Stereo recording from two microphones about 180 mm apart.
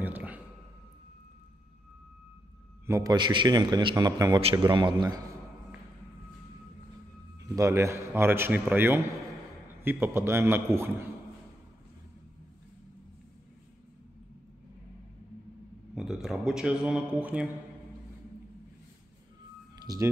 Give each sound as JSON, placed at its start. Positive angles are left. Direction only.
{"t": 0.0, "sound": "a sound", "side_deg": -10}
{"t": 2.9, "sound": "a man's voice", "side_deg": -20}
{"t": 7.4, "sound": "a man's voice", "side_deg": -15}
{"t": 15.9, "sound": "a man's voice", "side_deg": 0}
{"t": 19.8, "sound": "speech", "side_deg": -20}